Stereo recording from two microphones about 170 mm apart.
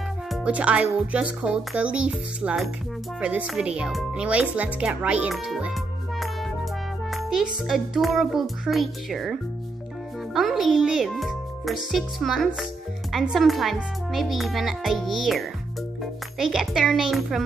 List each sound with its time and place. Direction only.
0.3 s speech: 5° right (ahead or behind)
7.1 s music: centre (ahead or behind)
7.6 s a child's voice: centre (ahead or behind)